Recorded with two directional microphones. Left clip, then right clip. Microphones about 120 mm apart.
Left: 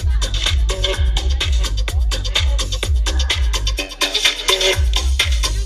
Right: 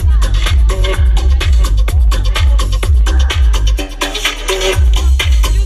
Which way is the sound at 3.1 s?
25° left (ahead or behind).